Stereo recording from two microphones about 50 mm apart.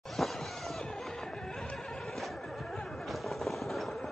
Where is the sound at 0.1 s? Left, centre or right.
Centre.